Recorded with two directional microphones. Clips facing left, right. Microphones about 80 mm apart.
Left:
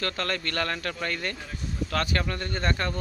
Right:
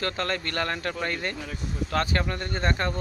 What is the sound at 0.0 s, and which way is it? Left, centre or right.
Speech, right.